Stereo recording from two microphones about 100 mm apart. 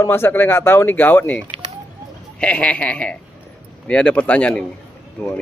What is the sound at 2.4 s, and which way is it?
A man's voice, 15° left (ahead or behind).